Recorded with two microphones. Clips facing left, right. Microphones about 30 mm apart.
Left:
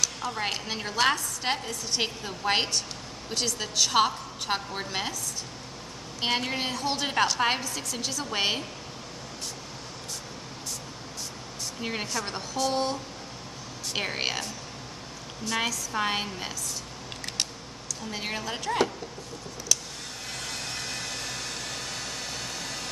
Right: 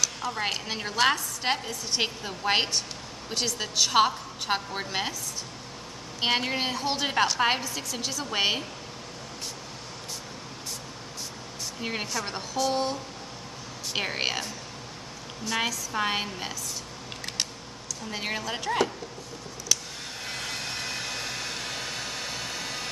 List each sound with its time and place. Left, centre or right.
0.0 s a woman's voice: centre
6.2 s a woman's voice: centre
11.8 s a woman's voice: centre
13.9 s a woman's voice: centre
18.1 s a woman's voice: centre
19.7 s a sound: right
20.2 s vehicle: centre